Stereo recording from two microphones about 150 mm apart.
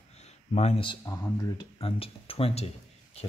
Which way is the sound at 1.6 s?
40° left (ahead or behind).